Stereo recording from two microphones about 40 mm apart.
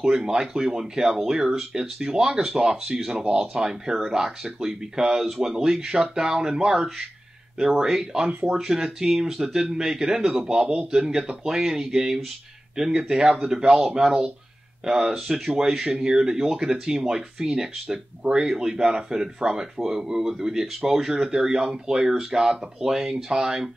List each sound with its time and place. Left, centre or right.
0.4 s speech: centre
10.6 s a man's voice: right
10.9 s speech: centre
13.7 s speech: centre